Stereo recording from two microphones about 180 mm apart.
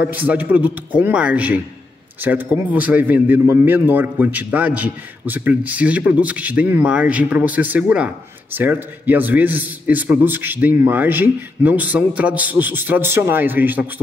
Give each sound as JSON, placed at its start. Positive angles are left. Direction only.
{"t": 0.0, "sound": "a man's voice", "side_deg": -10}